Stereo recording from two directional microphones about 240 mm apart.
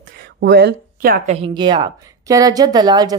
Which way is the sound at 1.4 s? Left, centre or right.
Centre.